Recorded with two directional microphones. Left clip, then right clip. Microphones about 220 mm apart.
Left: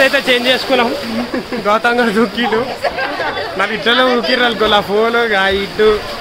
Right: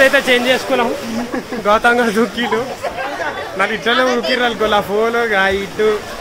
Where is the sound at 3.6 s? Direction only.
5° left (ahead or behind).